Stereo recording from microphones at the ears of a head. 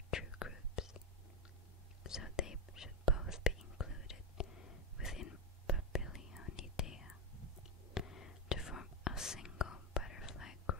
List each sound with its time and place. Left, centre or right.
0.1 s whispering: left
2.0 s whispering: left
8.1 s whispering: left